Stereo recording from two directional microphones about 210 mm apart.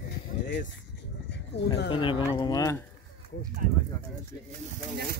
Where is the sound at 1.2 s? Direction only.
55° left (ahead or behind).